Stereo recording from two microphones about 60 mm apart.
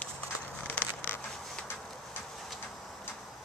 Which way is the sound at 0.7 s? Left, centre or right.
Left.